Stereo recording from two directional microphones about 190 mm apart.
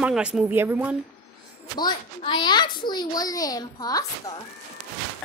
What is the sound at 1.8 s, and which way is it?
A child's voice, 25° left (ahead or behind).